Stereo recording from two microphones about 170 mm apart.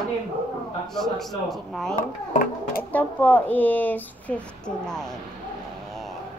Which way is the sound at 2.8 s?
10° left (ahead or behind).